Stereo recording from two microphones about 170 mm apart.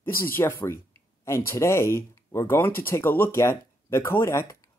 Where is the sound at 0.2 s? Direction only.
15° left (ahead or behind).